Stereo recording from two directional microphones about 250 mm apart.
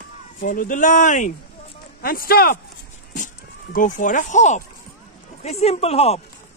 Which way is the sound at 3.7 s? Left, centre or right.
Left.